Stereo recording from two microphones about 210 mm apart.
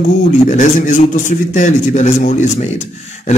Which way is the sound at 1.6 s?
35° left (ahead or behind).